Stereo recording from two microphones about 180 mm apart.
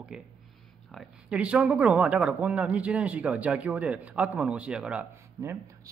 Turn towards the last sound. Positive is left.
turn(degrees=-5)  # may be behind; listen again after turning